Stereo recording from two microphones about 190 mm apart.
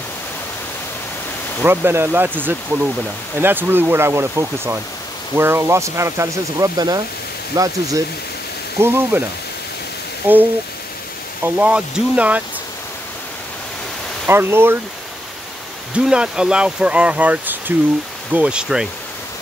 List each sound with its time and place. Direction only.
1.6 s speech: 10° right (ahead or behind)
10.2 s speech: 10° right (ahead or behind)
11.4 s speech: 5° right (ahead or behind)
14.2 s speech: 10° right (ahead or behind)
15.9 s speech: 5° right (ahead or behind)